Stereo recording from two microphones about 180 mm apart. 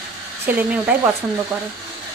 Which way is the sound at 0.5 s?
10° right (ahead or behind).